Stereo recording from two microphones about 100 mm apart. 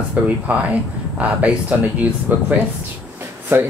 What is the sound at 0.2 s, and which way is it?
Speech, 15° right (ahead or behind).